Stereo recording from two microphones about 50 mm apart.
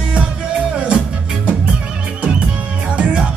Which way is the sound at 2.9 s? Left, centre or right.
Right.